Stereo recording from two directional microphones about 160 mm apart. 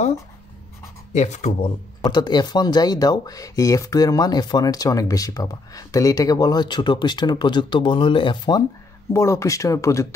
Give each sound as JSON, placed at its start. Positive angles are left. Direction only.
{"t": 1.1, "sound": "speech", "side_deg": 45}
{"t": 2.0, "sound": "speech", "side_deg": 25}